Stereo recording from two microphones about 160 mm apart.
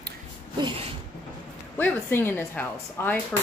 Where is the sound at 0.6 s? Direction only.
30° right (ahead or behind).